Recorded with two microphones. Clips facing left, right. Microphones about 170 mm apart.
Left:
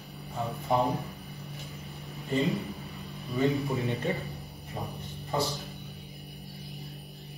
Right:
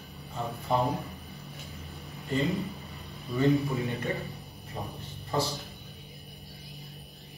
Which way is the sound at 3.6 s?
20° left (ahead or behind).